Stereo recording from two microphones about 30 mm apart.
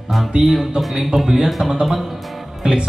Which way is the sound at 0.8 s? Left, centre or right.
Centre.